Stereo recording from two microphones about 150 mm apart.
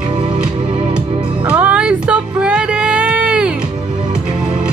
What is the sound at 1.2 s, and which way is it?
Music, 10° right (ahead or behind).